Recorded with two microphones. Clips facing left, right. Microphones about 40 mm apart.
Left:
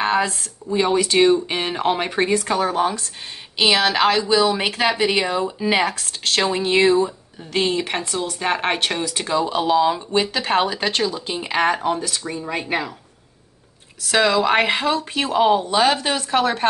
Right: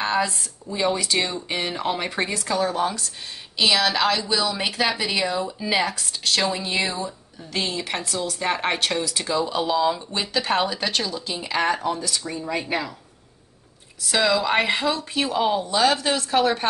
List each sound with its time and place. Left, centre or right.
0.0 s a sound: left
0.7 s speech: left
2.4 s speech: left
5.9 s speech: left
12.2 s speech: centre
14.1 s speech: left